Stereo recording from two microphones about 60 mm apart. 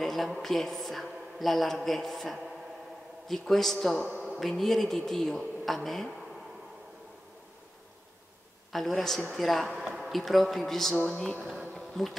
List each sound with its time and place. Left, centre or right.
0.0 s a man's voice: centre
8.7 s speech: centre
11.1 s speech: centre
11.7 s bee: centre